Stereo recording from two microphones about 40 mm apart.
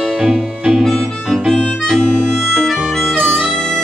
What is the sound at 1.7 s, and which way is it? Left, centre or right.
Harmonica, centre.